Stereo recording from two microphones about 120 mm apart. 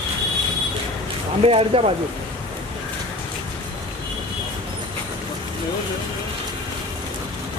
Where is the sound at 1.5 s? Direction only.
50° right (ahead or behind).